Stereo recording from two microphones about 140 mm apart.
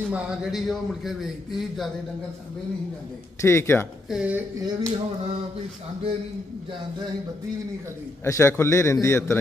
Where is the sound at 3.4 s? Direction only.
20° left (ahead or behind).